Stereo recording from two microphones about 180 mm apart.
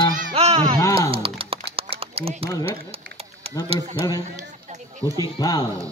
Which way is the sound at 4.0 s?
20° left (ahead or behind).